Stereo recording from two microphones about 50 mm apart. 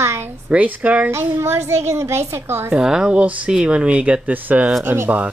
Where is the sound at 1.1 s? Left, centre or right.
Right.